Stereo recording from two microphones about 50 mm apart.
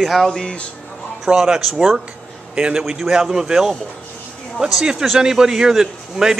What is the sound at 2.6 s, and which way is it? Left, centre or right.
Speech, centre.